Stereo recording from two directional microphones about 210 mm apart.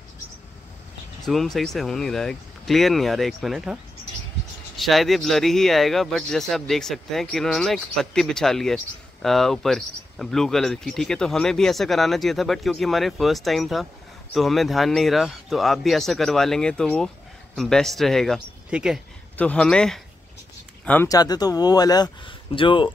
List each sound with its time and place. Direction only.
1.2 s speech: centre (ahead or behind); by 22.8 s 25° left (ahead or behind)